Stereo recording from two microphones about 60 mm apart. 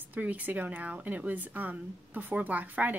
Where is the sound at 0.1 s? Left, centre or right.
Right.